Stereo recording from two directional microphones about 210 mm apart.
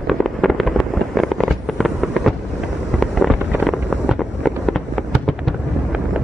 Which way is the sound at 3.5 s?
5° right (ahead or behind).